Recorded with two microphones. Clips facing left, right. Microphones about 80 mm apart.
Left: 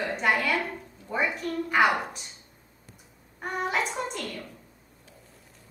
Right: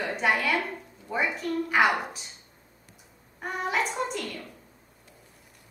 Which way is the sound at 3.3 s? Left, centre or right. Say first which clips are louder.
Even; centre.